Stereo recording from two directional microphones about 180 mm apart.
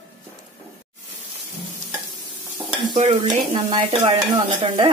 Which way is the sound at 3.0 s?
40° right (ahead or behind).